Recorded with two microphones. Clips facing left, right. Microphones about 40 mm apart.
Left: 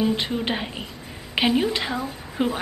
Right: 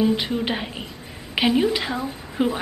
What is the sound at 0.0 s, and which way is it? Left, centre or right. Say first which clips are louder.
A woman's voice: right 2 dB; centre.